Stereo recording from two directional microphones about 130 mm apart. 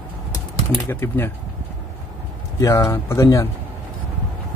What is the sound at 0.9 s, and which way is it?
Speech, 20° left (ahead or behind).